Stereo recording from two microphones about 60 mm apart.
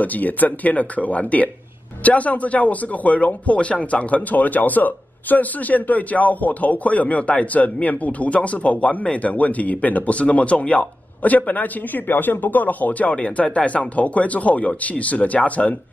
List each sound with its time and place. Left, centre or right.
0.0 s a man's voice: left